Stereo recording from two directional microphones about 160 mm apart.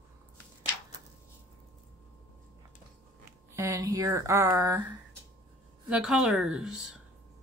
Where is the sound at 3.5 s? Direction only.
20° right (ahead or behind).